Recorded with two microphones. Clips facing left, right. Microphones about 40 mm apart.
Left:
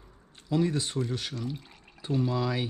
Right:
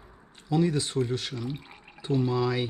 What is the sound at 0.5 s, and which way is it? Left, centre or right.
Speech, centre.